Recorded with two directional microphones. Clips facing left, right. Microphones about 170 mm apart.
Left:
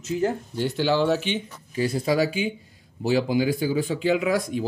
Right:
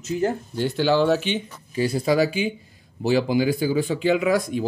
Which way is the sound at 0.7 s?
65° right (ahead or behind).